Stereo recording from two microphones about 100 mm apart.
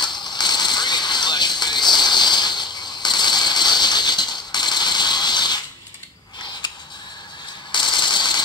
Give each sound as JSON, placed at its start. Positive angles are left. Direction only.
{"t": 0.0, "sound": "music", "side_deg": 45}
{"t": 6.6, "sound": "creak", "side_deg": 50}
{"t": 7.7, "sound": "a sound", "side_deg": 50}